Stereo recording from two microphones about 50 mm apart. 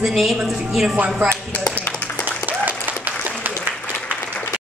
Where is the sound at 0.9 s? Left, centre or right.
Right.